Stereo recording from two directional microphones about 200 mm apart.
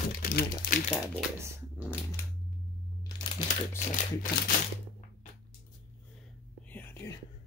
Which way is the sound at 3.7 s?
40° left (ahead or behind).